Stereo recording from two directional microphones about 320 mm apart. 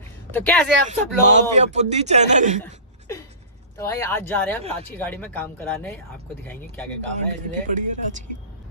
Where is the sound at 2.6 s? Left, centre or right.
Centre.